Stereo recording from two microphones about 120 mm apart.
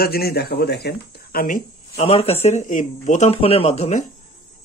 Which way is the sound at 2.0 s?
55° left (ahead or behind).